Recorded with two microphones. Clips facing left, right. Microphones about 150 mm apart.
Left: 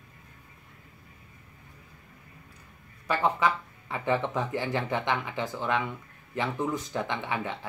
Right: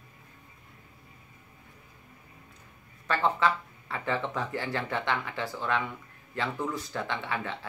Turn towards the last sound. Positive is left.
turn(degrees=15)  # may be behind; listen again after turning